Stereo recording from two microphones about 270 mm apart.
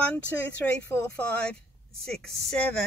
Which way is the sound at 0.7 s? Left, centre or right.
Centre.